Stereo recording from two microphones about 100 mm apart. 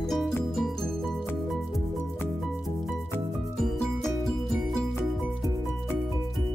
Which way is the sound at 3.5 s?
Centre (ahead or behind).